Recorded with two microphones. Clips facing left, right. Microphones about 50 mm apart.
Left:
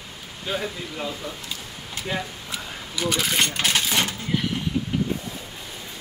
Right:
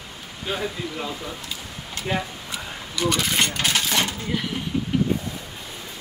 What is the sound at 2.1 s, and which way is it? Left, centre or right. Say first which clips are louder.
Speech: right 3 dB; centre.